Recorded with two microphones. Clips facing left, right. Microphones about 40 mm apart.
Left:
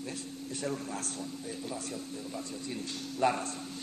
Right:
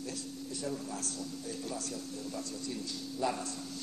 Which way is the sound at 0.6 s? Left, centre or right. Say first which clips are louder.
Left 3 dB; left.